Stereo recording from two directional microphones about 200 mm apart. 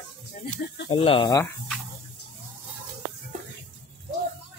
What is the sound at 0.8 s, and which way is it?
Speech, 25° left (ahead or behind).